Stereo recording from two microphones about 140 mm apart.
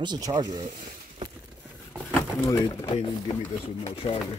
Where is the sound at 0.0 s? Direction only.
30° right (ahead or behind).